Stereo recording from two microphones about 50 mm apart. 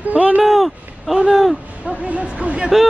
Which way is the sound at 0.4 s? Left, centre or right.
Centre.